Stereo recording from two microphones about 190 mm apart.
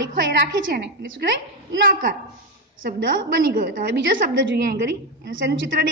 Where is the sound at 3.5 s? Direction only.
50° right (ahead or behind).